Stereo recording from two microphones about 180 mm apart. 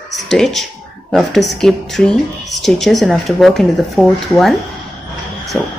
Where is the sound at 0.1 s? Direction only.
Centre (ahead or behind).